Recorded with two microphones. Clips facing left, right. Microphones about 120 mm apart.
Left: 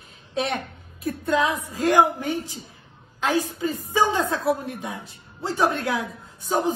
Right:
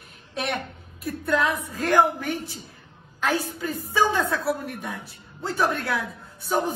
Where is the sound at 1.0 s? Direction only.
25° left (ahead or behind).